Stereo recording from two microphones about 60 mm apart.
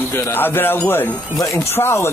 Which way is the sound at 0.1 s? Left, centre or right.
Left.